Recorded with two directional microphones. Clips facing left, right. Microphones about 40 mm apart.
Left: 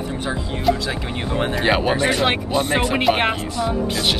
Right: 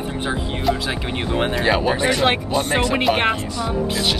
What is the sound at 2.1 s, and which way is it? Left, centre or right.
Speech, centre.